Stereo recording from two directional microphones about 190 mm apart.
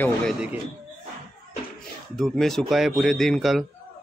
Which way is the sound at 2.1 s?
Centre (ahead or behind).